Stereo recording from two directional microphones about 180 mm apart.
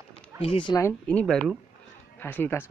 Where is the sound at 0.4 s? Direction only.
30° left (ahead or behind).